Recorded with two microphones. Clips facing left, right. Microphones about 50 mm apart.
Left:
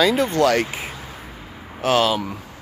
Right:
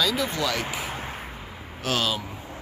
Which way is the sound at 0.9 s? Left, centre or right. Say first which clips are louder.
Right 2 dB; right.